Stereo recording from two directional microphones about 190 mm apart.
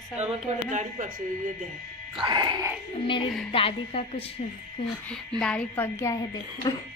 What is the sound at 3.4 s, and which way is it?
Speech, 30° left (ahead or behind).